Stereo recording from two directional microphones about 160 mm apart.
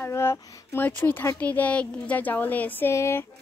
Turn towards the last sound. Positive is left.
turn(degrees=15)  # may be behind; listen again after turning